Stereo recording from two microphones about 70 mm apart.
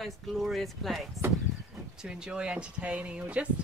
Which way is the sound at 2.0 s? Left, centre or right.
Centre.